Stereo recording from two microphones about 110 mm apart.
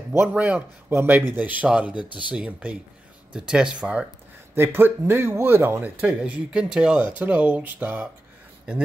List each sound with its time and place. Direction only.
0.2 s speech: 10° right (ahead or behind)
4.6 s speech: 20° right (ahead or behind)